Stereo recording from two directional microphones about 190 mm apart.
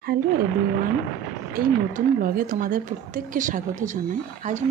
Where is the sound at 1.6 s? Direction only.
45° right (ahead or behind).